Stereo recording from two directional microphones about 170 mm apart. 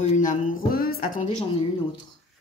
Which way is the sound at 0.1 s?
50° left (ahead or behind).